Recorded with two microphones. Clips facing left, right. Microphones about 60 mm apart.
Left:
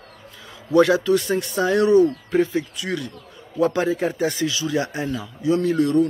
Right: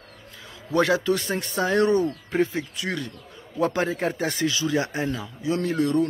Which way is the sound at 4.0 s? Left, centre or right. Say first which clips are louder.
Left 3 dB; right.